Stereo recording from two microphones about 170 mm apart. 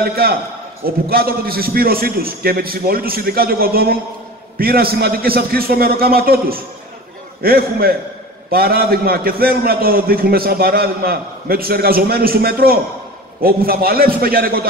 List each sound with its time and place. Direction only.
0.1 s a man's voice: 60° right (ahead or behind)